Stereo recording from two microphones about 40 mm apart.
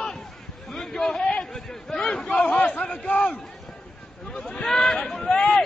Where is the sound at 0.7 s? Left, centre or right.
Centre; by 3.4 s left.